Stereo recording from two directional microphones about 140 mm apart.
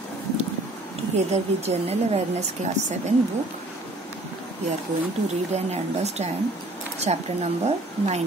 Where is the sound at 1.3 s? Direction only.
50° right (ahead or behind).